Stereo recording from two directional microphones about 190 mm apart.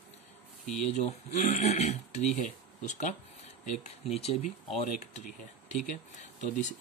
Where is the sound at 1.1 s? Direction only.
40° left (ahead or behind).